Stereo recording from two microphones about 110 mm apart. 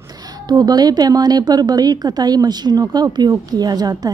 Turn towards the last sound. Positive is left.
turn(degrees=-35)  # may be behind; listen again after turning